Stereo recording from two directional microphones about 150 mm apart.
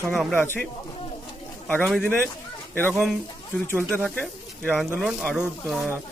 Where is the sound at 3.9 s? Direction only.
10° left (ahead or behind).